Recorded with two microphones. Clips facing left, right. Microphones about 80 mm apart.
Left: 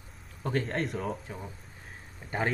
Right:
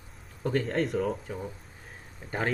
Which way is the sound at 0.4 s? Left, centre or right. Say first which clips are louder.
Right 3 dB; left.